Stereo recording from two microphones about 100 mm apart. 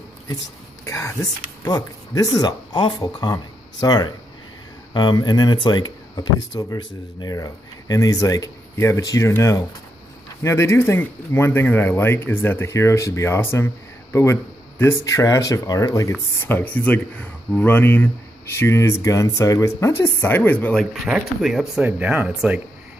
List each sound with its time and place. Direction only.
0.8 s speech: 30° left (ahead or behind)
20.7 s speech: centre (ahead or behind)
21.8 s speech: 15° right (ahead or behind)